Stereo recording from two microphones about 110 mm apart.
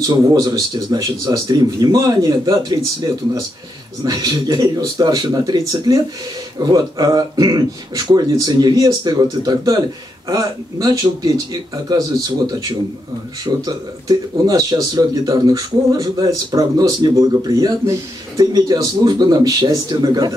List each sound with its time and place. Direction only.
0.0 s speech: 35° right (ahead or behind)
4.0 s speech: 35° right (ahead or behind)
13.7 s speech: 35° right (ahead or behind)